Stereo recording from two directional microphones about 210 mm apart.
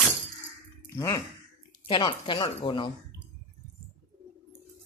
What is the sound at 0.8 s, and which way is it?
Speech, 15° left (ahead or behind).